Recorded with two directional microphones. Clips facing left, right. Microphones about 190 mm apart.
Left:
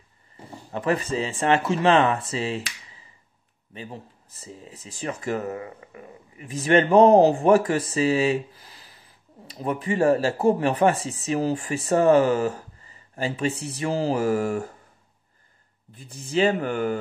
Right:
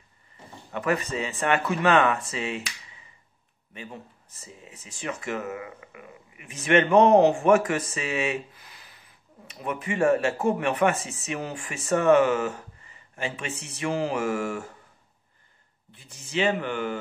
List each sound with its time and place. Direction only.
0.7 s speech: 30° left (ahead or behind)
15.9 s speech: 40° left (ahead or behind)